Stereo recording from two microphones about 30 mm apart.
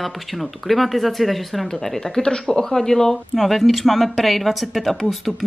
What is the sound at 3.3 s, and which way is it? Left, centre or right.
Speech, centre.